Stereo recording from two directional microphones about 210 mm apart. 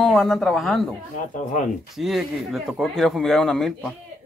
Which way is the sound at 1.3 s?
40° left (ahead or behind).